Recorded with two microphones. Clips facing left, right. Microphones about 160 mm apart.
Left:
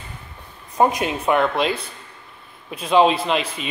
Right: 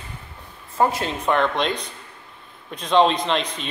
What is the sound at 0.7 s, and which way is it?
A man's voice, 15° left (ahead or behind).